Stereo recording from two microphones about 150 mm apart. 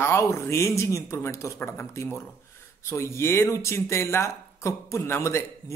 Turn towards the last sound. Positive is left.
turn(degrees=20)  # may be behind; listen again after turning